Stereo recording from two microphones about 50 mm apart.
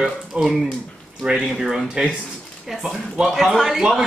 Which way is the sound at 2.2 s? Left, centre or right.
Centre.